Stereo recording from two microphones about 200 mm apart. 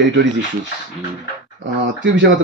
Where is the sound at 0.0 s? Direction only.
60° right (ahead or behind).